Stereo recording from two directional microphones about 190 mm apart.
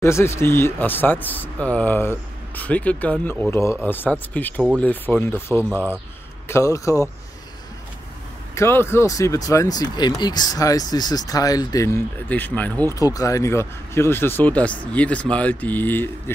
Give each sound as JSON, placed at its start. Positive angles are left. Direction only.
{"t": 0.0, "sound": "speech", "side_deg": 15}
{"t": 5.6, "sound": "speech", "side_deg": -10}
{"t": 6.4, "sound": "speech", "side_deg": 15}
{"t": 8.5, "sound": "speech", "side_deg": 15}